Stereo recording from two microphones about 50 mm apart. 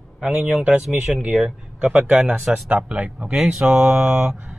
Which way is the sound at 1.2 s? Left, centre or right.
Centre.